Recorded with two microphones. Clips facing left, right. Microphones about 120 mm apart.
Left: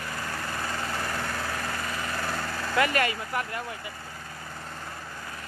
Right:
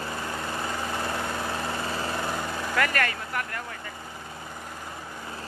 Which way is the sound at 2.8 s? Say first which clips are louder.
Left 2 dB; 20° left (ahead or behind).